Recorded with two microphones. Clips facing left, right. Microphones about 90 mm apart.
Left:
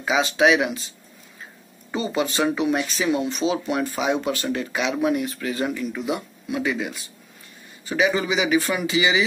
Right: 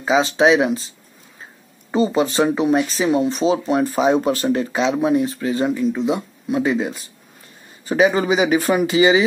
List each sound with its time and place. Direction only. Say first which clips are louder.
0.0 s speech: right 4 dB; 30° right (ahead or behind)